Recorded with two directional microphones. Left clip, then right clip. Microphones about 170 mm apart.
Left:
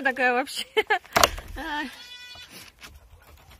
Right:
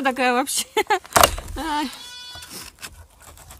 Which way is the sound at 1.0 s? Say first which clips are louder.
Right 7 dB; 90° right.